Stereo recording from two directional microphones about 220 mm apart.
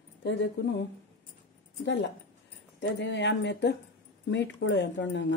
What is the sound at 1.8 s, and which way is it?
Speech, 55° left (ahead or behind).